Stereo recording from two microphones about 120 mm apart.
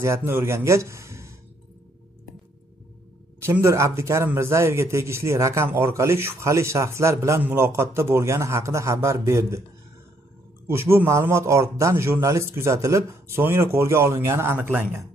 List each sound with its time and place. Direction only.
0.0 s a man's voice: 20° right (ahead or behind)
3.6 s speech: 25° right (ahead or behind)
10.7 s speech: 20° right (ahead or behind)